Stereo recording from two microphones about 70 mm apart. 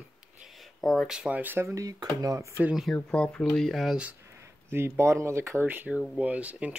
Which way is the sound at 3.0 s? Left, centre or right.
Centre.